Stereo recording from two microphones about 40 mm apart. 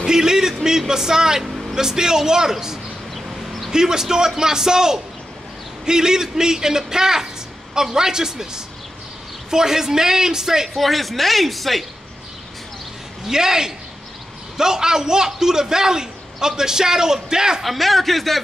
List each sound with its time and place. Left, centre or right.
0.0 s a man's voice: centre
1.5 s vehicle: centre
1.8 s a man's voice: centre
3.2 s a sound: centre
3.7 s a man's voice: centre
10.8 s speech: centre
13.3 s a man's voice: centre
17.6 s speech: centre